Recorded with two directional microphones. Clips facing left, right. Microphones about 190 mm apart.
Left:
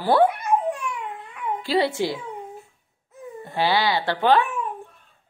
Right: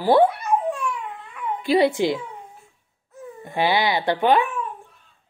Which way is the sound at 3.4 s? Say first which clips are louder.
Right 1 dB; 15° right (ahead or behind).